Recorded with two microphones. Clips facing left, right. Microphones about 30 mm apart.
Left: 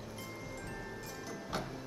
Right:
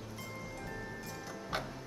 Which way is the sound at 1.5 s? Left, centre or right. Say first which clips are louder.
Right 2 dB; right.